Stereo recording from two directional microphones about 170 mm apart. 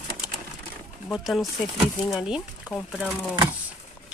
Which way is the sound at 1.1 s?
Centre (ahead or behind).